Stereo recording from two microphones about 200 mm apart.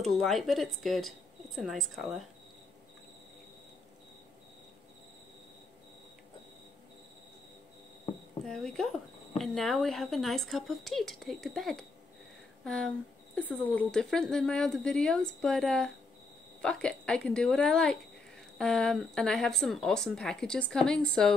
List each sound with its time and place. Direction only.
0.0 s speech: centre (ahead or behind)
8.5 s speech: centre (ahead or behind)